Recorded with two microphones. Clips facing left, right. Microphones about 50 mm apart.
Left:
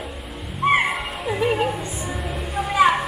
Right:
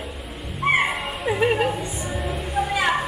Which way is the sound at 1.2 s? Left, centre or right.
Right.